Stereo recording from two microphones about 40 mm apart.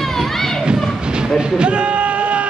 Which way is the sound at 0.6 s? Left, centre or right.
Right.